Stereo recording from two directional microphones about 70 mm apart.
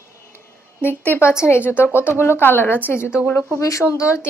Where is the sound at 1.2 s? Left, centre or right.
Left.